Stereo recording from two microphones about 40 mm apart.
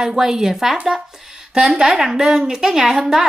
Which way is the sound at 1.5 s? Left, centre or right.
Centre.